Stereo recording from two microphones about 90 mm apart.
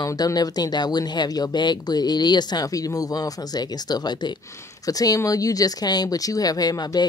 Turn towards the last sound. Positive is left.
turn(degrees=45)  # may be behind; listen again after turning